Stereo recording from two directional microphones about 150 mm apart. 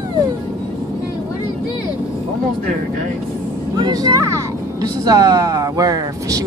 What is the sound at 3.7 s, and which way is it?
Speech, 25° right (ahead or behind).